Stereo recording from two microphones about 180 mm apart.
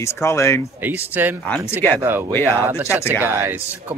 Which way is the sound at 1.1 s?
10° right (ahead or behind).